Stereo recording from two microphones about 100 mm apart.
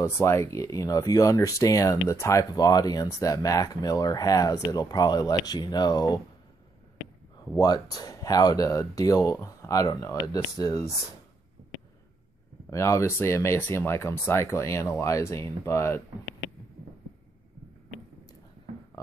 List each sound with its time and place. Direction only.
0.0 s speech: 30° left (ahead or behind)
7.5 s speech: 40° left (ahead or behind)
12.6 s speech: 30° left (ahead or behind)